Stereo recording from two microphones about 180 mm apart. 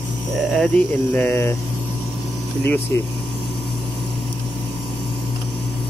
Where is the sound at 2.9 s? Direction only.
15° left (ahead or behind).